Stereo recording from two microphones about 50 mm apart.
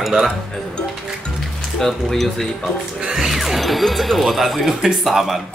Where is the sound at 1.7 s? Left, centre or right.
Centre.